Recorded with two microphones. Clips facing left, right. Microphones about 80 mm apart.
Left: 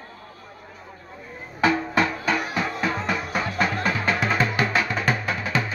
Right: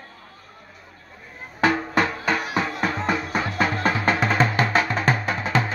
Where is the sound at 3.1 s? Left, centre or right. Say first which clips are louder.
Right 2 dB; right.